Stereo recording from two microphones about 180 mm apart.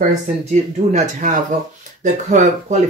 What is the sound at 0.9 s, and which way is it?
Speech, 40° right (ahead or behind).